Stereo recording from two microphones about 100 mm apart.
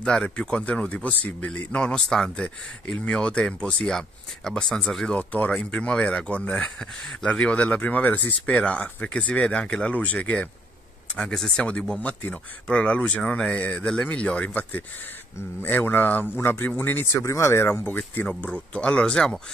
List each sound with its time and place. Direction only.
0.0 s speech: 10° left (ahead or behind)